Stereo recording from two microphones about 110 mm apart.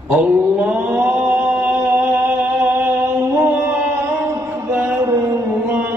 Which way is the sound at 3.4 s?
20° right (ahead or behind).